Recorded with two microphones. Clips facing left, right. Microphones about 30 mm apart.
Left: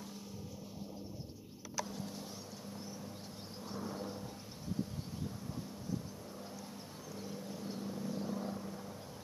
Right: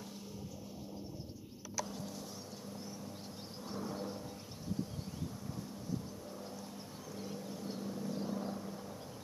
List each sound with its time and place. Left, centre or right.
3.6 s vehicle: centre
7.2 s vehicle: centre